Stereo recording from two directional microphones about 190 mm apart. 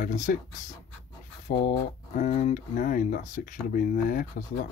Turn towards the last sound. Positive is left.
turn(degrees=45)  # may be behind; listen again after turning